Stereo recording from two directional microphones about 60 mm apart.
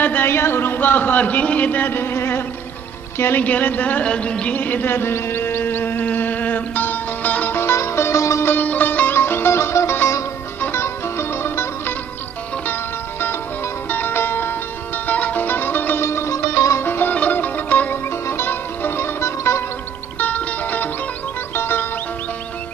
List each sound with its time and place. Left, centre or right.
0.0 s speech: left
3.4 s speech: left
4.0 s music: centre; by 8.5 s left
8.5 s music: left
13.8 s music: left
15.0 s music: left
16.0 s music: left
18.1 s music: left
20.2 s music: left